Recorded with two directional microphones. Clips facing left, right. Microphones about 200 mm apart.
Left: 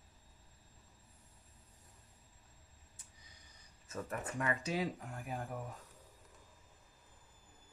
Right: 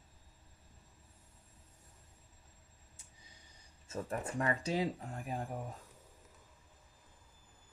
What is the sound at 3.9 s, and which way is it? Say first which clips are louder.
Speech: right 3 dB; 30° right (ahead or behind).